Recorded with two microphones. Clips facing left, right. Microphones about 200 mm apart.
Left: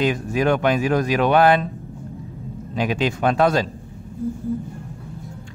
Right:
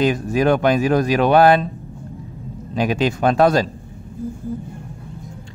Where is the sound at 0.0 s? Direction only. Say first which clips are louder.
Right 3 dB; 40° right (ahead or behind).